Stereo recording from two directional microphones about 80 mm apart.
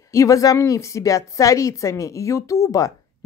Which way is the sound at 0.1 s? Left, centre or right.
Left.